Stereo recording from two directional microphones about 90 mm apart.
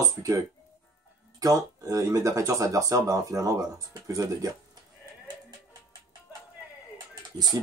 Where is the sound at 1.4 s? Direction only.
40° right (ahead or behind).